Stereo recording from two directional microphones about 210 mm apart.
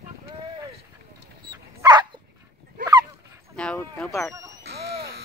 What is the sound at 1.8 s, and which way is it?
Dog, 20° right (ahead or behind).